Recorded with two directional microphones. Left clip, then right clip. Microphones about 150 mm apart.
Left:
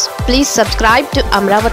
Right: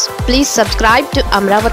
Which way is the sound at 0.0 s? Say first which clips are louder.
Even; centre (ahead or behind).